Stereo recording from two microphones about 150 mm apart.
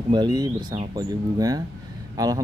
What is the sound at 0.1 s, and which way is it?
Speech, 30° right (ahead or behind).